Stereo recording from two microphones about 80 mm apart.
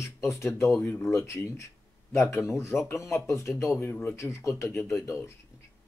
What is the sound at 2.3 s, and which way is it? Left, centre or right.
Speech, left.